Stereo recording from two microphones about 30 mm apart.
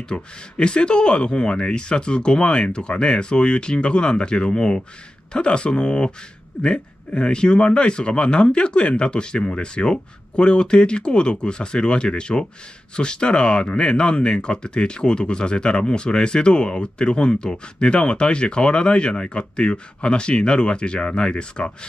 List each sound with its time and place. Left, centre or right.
0.1 s speech: left